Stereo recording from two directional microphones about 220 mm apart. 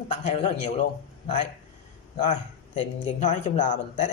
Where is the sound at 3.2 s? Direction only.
35° left (ahead or behind).